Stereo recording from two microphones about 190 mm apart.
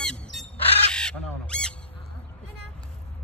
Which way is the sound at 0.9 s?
5° left (ahead or behind).